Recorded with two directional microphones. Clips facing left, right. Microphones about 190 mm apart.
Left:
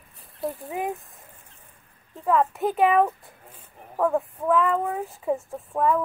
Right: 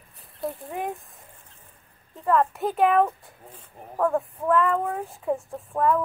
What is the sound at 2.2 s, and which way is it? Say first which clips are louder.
Speech: even; centre (ahead or behind).